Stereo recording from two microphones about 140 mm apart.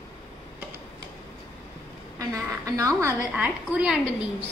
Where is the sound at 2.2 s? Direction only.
25° right (ahead or behind).